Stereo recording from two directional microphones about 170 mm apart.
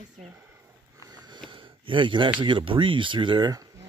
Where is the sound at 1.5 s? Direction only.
30° right (ahead or behind).